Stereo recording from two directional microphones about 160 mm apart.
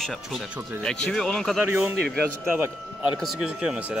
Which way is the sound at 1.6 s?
10° right (ahead or behind).